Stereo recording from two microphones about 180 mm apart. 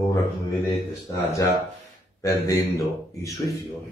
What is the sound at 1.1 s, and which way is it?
Speech, 15° left (ahead or behind).